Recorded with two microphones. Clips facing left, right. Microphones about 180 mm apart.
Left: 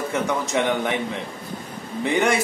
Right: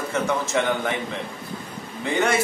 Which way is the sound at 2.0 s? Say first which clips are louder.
Left 1 dB; 15° left (ahead or behind).